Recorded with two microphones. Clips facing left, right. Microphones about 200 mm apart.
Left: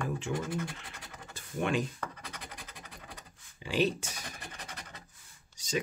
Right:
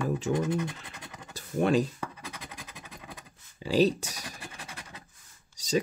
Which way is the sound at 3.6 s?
35° right (ahead or behind).